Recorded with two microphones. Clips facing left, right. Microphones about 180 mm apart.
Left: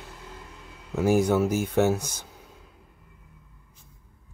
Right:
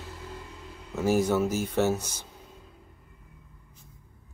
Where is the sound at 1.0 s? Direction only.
15° left (ahead or behind).